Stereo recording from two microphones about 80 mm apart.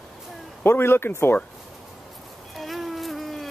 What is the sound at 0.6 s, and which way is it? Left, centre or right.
Speech, left.